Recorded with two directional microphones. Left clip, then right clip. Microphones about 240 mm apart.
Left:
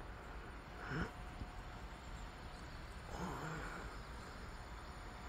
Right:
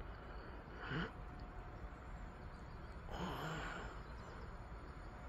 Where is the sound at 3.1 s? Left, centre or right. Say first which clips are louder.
Right 1 dB; centre.